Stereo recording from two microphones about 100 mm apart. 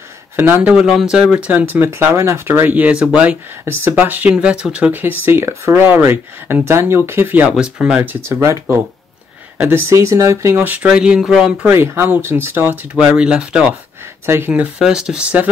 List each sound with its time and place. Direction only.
0.4 s speech: 20° right (ahead or behind)
0.7 s speech: 5° right (ahead or behind)
1.5 s speech: 20° right (ahead or behind)
7.5 s speech: 10° right (ahead or behind); by 8.5 s 25° right (ahead or behind)
9.7 s speech: 25° right (ahead or behind)
10.6 s speech: 15° right (ahead or behind)
11.7 s speech: 25° right (ahead or behind)
14.2 s speech: 25° right (ahead or behind)
14.8 s speech: 5° right (ahead or behind)